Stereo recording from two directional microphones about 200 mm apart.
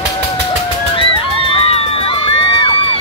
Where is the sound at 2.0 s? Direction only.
25° left (ahead or behind).